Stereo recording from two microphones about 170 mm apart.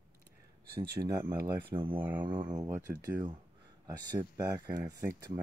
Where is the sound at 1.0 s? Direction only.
25° right (ahead or behind).